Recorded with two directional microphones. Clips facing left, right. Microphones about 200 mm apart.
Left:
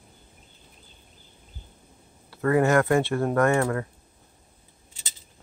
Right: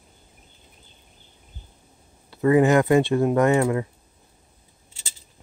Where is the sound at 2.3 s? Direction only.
15° right (ahead or behind).